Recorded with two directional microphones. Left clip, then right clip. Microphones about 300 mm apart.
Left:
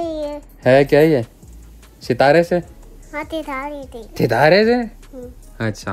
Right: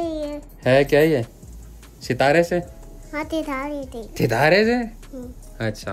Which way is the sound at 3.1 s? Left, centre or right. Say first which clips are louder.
Left 1 dB; centre.